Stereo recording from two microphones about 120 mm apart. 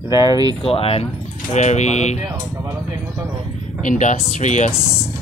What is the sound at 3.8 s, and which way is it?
Speech, 90° left.